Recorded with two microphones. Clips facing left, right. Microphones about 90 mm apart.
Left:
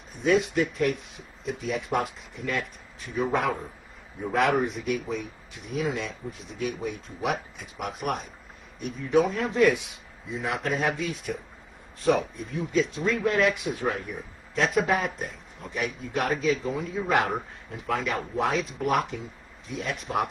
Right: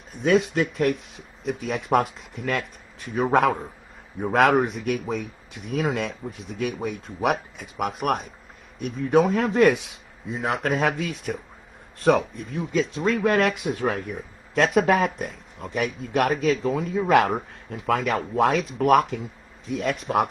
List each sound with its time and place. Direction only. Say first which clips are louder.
0.2 s speech: right 2 dB; 70° right (ahead or behind)
6.6 s speech: right 3 dB; 60° right (ahead or behind)
14.5 s speech: right 5 dB; 75° right (ahead or behind)